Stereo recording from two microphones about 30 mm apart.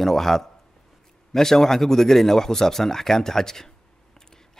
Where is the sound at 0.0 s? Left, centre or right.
Centre.